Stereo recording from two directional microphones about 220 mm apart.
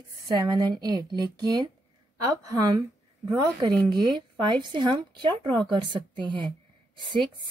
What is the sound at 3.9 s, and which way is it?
Speech, 20° right (ahead or behind).